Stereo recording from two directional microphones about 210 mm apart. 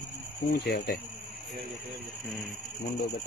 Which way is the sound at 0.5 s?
50° left (ahead or behind).